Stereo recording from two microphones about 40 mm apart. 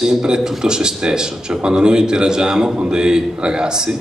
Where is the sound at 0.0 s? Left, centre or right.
Centre.